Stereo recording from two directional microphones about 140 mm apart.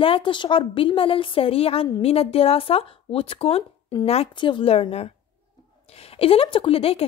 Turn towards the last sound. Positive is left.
turn(degrees=45)  # may be behind; listen again after turning